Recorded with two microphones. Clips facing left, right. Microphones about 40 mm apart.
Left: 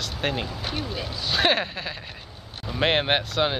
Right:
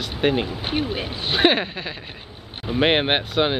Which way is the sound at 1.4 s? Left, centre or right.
Centre.